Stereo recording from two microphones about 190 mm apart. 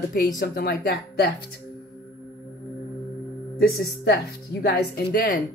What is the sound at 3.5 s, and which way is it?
A woman's voice, 55° left (ahead or behind).